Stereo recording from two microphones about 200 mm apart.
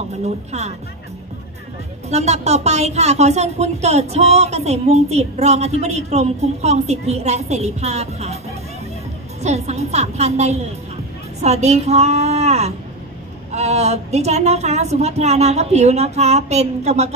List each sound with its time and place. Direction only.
0.5 s a woman's voice: 35° right (ahead or behind)
2.0 s a woman's voice: 35° right (ahead or behind)
9.4 s a woman's voice: 35° right (ahead or behind)